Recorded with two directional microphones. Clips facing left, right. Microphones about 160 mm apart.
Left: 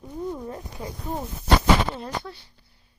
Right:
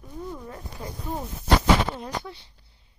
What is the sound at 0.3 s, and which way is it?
Speech, 20° left (ahead or behind).